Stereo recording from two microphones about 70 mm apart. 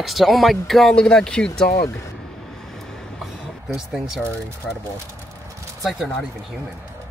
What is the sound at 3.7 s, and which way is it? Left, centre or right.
Speech, centre.